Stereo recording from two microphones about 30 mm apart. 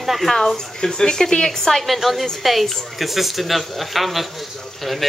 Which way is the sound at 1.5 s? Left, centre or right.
Centre.